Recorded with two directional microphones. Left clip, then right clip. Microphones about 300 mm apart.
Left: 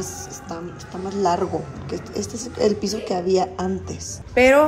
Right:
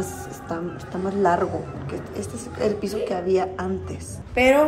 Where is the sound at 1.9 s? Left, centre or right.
Centre.